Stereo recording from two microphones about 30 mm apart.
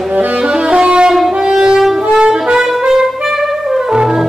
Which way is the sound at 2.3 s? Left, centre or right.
Right.